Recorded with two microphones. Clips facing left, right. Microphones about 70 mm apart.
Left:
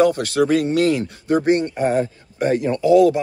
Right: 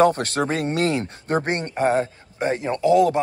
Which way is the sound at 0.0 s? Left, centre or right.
Right.